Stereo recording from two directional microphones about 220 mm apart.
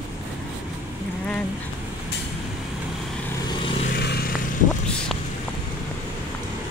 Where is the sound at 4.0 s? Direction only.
50° left (ahead or behind).